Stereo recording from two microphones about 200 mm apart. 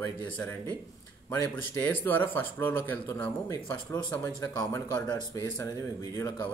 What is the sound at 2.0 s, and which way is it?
Speech, 10° left (ahead or behind).